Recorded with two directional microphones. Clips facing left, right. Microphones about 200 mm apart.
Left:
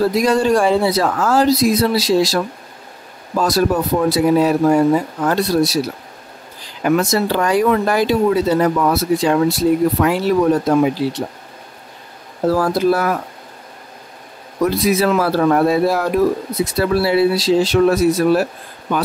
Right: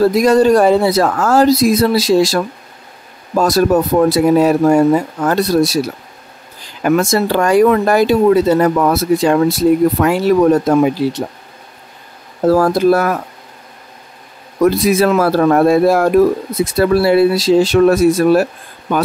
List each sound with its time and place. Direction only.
0.1 s speech: 45° right (ahead or behind)
6.8 s speech: 45° right (ahead or behind)
12.4 s speech: 45° right (ahead or behind)
14.6 s speech: 50° right (ahead or behind)